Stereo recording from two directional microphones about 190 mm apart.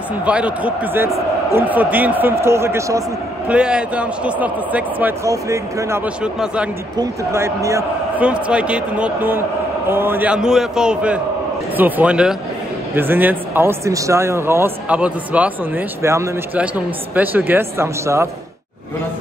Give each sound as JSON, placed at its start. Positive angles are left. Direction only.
{"t": 0.2, "sound": "speech", "side_deg": -5}
{"t": 7.0, "sound": "a man's voice", "side_deg": -15}